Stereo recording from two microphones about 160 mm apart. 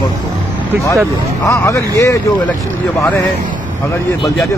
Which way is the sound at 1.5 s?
20° left (ahead or behind).